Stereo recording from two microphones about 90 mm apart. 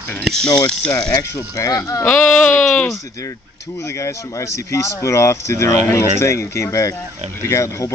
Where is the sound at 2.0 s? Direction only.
20° left (ahead or behind).